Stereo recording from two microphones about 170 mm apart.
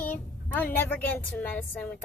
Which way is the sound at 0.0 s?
10° left (ahead or behind).